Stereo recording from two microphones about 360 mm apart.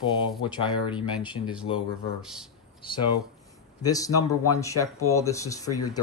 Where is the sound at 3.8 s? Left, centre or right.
Centre.